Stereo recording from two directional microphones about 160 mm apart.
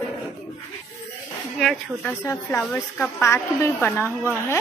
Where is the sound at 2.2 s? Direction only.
15° left (ahead or behind).